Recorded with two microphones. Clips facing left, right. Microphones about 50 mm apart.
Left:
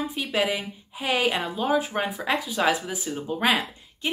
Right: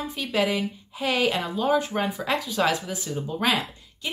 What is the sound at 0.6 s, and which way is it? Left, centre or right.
Speech, centre.